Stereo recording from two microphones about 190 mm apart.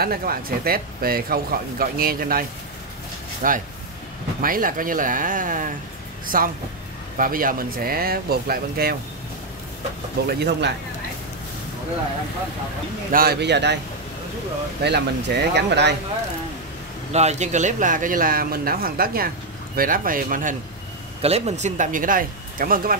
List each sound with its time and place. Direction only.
0.0 s a man's voice: 50° right (ahead or behind)
3.4 s a man's voice: 45° right (ahead or behind)
10.2 s speech: 60° right (ahead or behind)
13.1 s speech: 55° right (ahead or behind)
14.8 s speech: 60° right (ahead or behind)
17.1 s a man's voice: 35° right (ahead or behind)
21.2 s speech: 35° right (ahead or behind)